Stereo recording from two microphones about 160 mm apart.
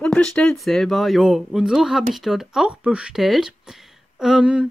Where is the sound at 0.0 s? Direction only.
5° left (ahead or behind).